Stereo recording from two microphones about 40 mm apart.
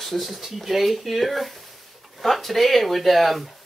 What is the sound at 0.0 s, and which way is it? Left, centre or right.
Speech, centre.